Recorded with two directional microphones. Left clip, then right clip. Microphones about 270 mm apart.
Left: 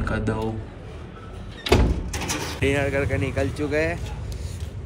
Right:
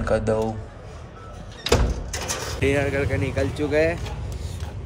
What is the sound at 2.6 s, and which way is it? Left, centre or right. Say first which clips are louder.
Speech: right 1 dB; centre.